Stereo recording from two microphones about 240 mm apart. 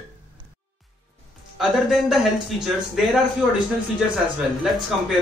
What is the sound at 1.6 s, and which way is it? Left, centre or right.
Speech, centre.